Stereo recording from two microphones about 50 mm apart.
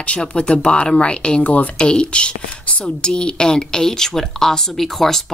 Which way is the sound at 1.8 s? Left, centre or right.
Centre.